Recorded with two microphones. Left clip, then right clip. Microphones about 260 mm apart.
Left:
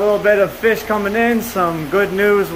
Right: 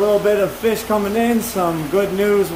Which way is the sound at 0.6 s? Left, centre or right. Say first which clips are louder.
Left 2 dB; centre.